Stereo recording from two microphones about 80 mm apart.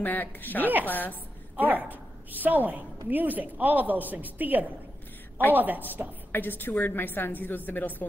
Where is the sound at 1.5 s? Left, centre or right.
Right.